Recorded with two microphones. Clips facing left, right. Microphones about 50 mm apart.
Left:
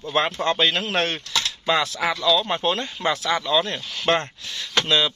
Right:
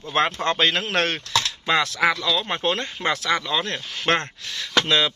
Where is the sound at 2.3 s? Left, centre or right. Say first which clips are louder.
Left 2 dB; right.